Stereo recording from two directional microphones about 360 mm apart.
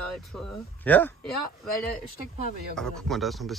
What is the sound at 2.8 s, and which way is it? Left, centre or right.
Speech, centre.